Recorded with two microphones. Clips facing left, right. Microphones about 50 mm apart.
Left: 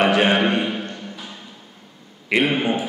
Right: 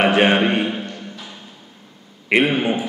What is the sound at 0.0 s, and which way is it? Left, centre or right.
Speech, right.